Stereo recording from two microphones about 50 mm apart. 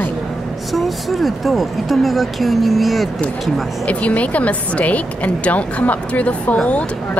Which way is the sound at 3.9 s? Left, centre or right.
Left.